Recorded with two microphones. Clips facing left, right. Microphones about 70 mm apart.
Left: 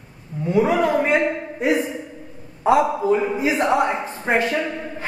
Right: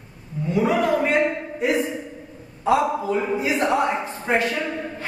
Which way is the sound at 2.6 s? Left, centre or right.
Left.